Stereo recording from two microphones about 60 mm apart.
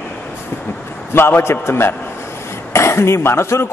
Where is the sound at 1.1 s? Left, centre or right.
Left.